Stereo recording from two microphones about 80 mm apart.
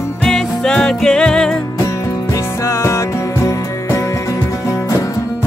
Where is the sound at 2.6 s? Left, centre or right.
Left.